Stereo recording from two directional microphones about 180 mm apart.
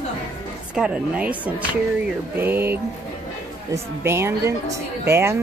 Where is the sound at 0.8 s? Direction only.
5° right (ahead or behind).